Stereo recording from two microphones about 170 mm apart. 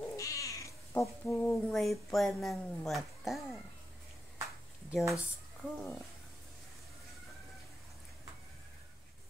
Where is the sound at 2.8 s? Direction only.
Centre (ahead or behind).